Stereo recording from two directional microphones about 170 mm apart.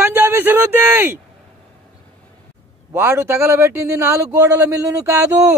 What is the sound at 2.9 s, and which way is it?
A man's voice, 15° right (ahead or behind).